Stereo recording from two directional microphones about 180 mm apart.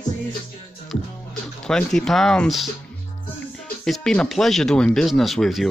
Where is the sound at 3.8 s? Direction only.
Centre (ahead or behind).